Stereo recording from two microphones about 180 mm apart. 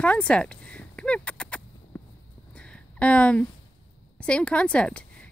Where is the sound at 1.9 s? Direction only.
10° left (ahead or behind).